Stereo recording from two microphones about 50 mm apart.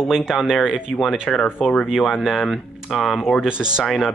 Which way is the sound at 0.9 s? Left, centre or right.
Centre.